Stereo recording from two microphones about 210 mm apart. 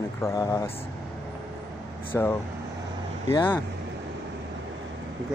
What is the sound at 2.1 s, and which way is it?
Speech, 10° left (ahead or behind).